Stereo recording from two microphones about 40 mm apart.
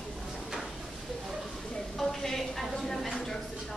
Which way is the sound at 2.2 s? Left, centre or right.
Centre.